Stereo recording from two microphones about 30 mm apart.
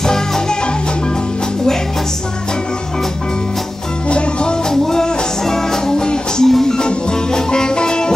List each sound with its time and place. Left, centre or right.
0.0 s music: centre
4.1 s music: left
4.6 s music: centre